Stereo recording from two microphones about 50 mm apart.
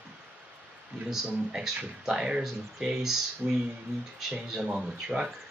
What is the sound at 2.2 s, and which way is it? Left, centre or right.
Speech, right.